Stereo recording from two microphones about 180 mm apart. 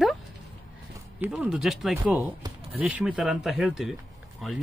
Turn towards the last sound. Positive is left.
turn(degrees=0)  # may be behind; listen again after turning